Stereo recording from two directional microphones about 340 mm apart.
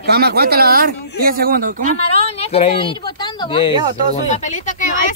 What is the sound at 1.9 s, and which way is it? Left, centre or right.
Speech, centre.